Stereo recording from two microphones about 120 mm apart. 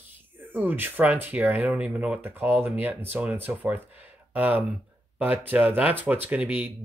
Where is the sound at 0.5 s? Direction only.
15° right (ahead or behind).